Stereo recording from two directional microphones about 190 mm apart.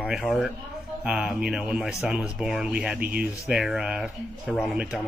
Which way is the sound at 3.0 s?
50° right (ahead or behind).